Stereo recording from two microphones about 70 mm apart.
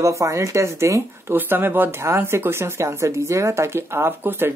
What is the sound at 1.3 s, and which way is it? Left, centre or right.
Speech, right.